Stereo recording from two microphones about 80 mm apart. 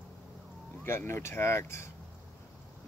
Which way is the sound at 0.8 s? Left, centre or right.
Left.